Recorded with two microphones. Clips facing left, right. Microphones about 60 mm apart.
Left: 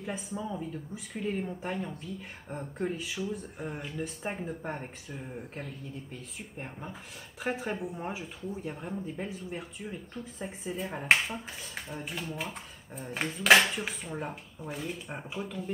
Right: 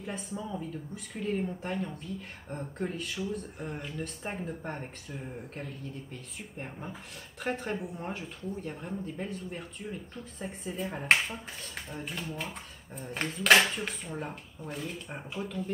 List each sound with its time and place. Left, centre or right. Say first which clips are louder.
0.0 s speech: left 1 dB; centre